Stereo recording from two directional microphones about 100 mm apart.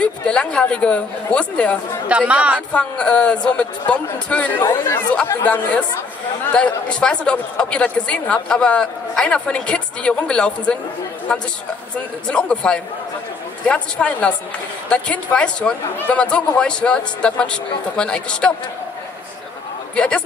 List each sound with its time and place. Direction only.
0.0 s speech: 10° left (ahead or behind)
2.0 s speech: 15° right (ahead or behind)
2.7 s speech: 10° left (ahead or behind)
4.6 s speech: 25° left (ahead or behind)
5.4 s speech: 15° left (ahead or behind)
20.0 s speech: 10° left (ahead or behind)